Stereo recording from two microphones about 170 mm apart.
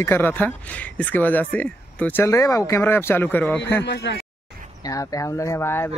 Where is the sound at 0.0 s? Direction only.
10° left (ahead or behind).